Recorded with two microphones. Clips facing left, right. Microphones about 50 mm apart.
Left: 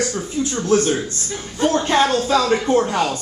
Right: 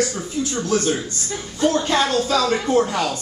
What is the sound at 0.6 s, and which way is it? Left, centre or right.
A man's voice, left.